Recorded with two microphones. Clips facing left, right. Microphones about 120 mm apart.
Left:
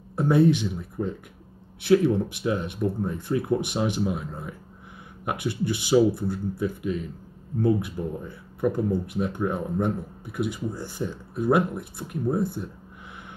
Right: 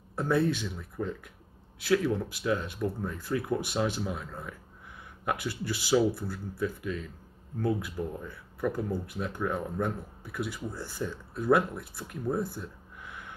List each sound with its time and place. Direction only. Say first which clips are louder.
0.1 s speech: left 7 dB; 20° left (ahead or behind)